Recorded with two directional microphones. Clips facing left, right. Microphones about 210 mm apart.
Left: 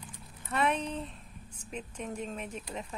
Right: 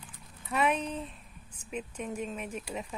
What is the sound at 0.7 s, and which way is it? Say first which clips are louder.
Speech: right 1 dB; 30° left (ahead or behind).